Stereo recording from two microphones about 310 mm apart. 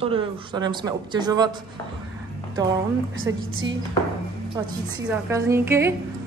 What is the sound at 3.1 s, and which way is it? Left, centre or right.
Speech, right.